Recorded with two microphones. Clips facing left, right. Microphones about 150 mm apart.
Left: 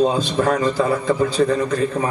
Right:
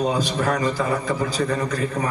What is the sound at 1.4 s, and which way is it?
Speech, 35° left (ahead or behind).